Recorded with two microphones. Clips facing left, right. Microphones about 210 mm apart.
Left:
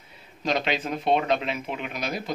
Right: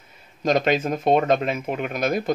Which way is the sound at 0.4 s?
45° right (ahead or behind).